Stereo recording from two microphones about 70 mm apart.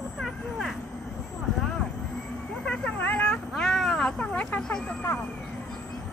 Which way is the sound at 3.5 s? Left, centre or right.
Centre.